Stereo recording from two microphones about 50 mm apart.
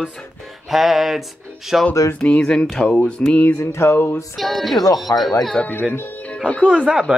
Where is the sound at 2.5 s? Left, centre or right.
Centre.